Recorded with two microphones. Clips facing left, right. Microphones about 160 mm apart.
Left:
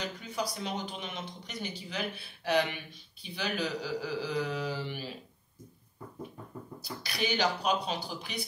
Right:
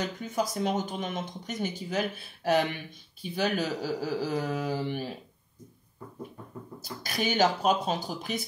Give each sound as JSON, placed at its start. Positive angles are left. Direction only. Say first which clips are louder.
{"t": 0.0, "sound": "speech", "louder": "right 5 dB", "side_deg": -45}
{"t": 6.8, "sound": "speech", "louder": "right 3 dB", "side_deg": -45}